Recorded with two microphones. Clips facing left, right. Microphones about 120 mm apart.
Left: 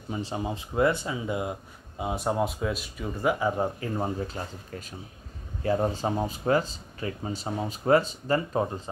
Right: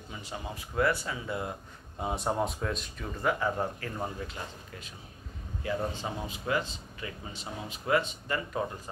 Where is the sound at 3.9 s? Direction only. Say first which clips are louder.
Left 6 dB; 35° left (ahead or behind).